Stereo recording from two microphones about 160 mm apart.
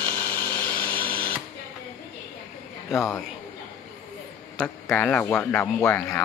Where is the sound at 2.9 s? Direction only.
15° left (ahead or behind).